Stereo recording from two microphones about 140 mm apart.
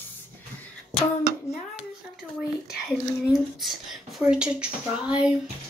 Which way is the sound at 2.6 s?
Centre (ahead or behind).